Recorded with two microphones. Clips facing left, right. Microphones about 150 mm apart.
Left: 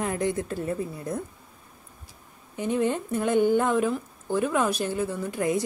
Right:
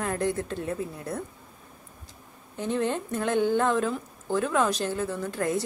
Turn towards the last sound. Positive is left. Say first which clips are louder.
# left 2 dB
turn(degrees=15)  # may be behind; listen again after turning